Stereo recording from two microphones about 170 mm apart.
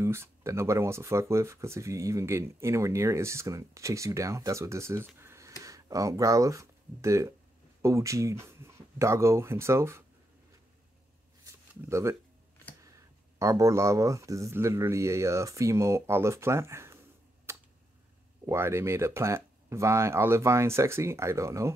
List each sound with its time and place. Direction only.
0.0 s speech: 15° right (ahead or behind)
11.7 s speech: 15° right (ahead or behind)
13.4 s speech: 20° right (ahead or behind)
17.5 s a sound: 15° right (ahead or behind)
18.4 s speech: 15° right (ahead or behind)